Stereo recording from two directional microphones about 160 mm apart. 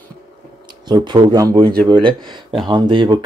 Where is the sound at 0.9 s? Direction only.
25° right (ahead or behind).